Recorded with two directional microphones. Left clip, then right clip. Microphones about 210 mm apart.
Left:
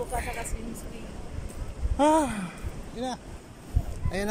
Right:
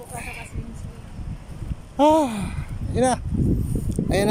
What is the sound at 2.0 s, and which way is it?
Speech, 15° right (ahead or behind).